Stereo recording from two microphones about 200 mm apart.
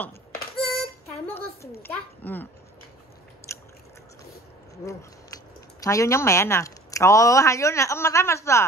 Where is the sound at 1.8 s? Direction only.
10° left (ahead or behind).